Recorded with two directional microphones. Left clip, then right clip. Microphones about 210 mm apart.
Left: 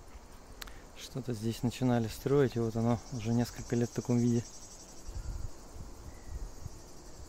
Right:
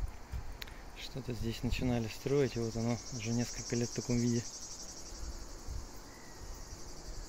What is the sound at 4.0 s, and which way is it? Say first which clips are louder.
Cricket: left 3 dB; 60° left (ahead or behind).